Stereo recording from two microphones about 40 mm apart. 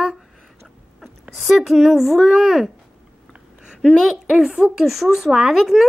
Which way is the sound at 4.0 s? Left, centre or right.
Centre.